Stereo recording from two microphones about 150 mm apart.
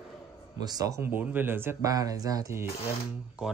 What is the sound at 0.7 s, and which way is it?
Speech, 25° right (ahead or behind).